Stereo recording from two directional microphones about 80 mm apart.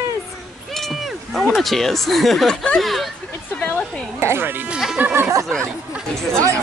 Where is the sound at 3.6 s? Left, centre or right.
Centre.